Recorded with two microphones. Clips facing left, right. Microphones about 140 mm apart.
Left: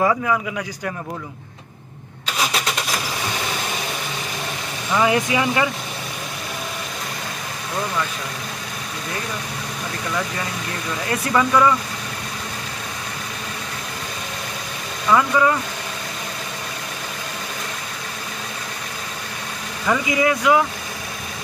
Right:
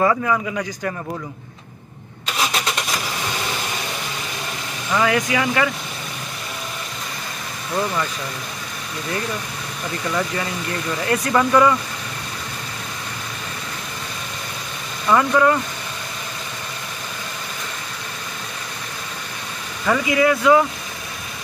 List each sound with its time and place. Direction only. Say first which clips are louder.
0.0 s speech: right 1 dB; 5° left (ahead or behind)
4.9 s speech: left 1 dB; 20° left (ahead or behind)
11.1 s speech: right 1 dB; centre (ahead or behind)
15.0 s speech: right 1 dB; centre (ahead or behind)
19.9 s speech: right 2 dB; 10° left (ahead or behind)